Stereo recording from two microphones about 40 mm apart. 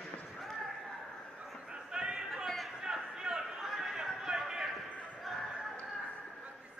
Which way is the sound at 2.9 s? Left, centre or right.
Centre.